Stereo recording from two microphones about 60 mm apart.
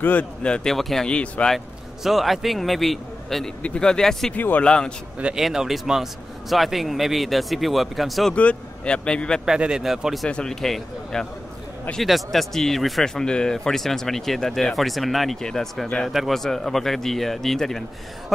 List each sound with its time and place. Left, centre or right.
0.0 s speech: left
0.4 s speech: centre
0.7 s speech: centre
1.0 s speech: centre
2.0 s speech: centre
3.6 s speech: centre
4.3 s speech: left
4.6 s speech: centre
5.4 s speech: centre
8.4 s speech: centre
9.5 s speech: centre
10.2 s speech: centre